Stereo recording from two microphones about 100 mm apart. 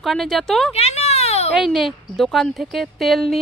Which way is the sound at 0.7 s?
90° left.